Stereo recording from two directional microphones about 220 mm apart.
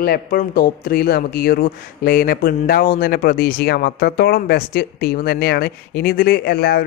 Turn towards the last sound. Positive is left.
turn(degrees=45)  # may be behind; listen again after turning